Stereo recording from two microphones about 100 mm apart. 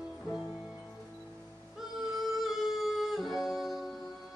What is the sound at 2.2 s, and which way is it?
Music, centre (ahead or behind).